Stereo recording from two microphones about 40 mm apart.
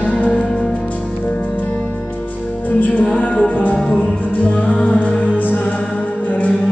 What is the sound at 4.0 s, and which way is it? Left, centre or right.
Music, left.